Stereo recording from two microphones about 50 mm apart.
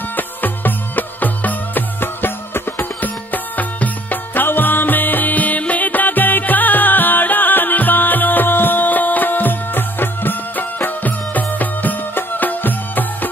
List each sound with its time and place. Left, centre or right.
0.1 s music: left